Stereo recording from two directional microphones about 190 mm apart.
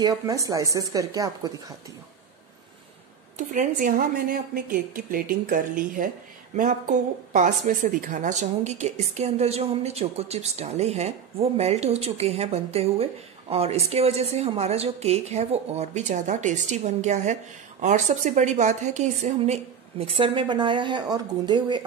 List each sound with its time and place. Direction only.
0.0 s speech: 20° right (ahead or behind)
3.3 s a woman's voice: 45° right (ahead or behind); by 21.8 s 25° right (ahead or behind)